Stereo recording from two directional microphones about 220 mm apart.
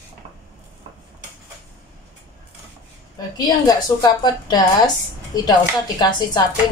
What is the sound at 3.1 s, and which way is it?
A woman's voice, 15° left (ahead or behind).